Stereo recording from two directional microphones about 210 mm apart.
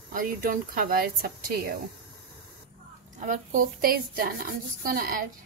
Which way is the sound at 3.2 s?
40° right (ahead or behind).